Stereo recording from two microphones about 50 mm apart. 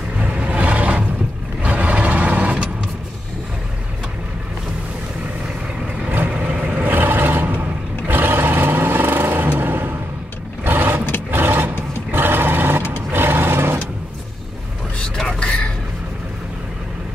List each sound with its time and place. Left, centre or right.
0.2 s vehicle: right
6.3 s vehicle: right
11.2 s roar: right
15.1 s a sound: centre